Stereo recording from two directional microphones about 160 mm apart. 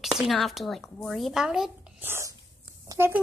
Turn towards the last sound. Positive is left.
turn(degrees=-15)  # may be behind; listen again after turning